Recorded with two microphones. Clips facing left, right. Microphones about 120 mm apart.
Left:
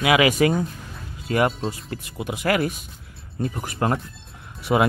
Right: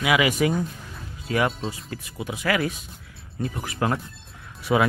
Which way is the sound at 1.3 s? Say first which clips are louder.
Left 3 dB; 45° left (ahead or behind).